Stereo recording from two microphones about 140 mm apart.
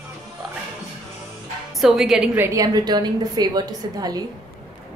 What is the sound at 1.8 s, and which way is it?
Speech, centre (ahead or behind).